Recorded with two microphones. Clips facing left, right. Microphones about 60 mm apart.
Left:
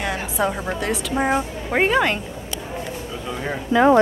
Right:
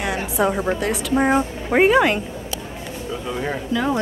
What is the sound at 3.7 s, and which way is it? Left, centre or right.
Speech, left.